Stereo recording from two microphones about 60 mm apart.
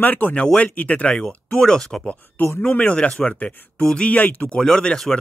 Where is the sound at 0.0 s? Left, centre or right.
Left; by 2.0 s centre.